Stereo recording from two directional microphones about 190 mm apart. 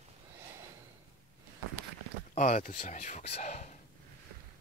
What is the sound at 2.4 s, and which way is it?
Speech, 40° left (ahead or behind).